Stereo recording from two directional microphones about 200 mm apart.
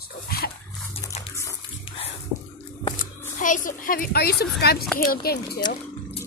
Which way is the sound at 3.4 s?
40° left (ahead or behind).